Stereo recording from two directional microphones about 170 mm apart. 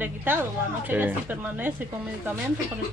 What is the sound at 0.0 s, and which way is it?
Speech, 10° right (ahead or behind).